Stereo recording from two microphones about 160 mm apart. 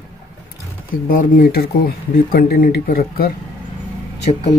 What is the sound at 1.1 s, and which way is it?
Speech, 55° left (ahead or behind).